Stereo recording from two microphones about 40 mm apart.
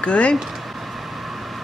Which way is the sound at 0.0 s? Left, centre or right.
Left.